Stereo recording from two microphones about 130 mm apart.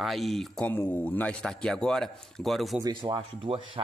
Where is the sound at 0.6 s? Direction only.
15° left (ahead or behind).